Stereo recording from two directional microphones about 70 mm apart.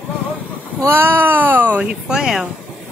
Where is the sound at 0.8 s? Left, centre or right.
Right.